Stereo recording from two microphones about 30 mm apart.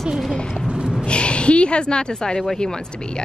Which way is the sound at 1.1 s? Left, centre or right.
Left.